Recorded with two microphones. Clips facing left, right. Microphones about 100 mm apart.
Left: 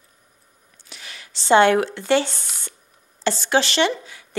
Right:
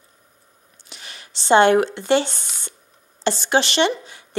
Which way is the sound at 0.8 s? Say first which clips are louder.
Even; 25° right (ahead or behind).